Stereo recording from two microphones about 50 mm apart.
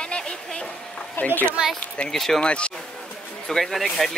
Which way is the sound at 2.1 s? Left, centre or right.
Centre.